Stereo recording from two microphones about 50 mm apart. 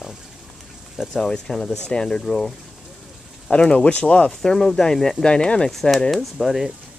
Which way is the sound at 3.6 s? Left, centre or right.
Left.